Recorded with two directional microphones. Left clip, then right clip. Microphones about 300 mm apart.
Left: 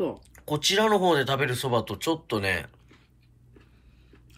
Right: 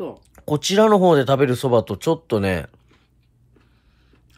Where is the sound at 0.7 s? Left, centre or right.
Right.